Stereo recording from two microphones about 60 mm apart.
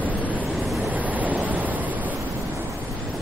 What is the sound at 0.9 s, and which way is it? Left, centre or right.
Waves, right.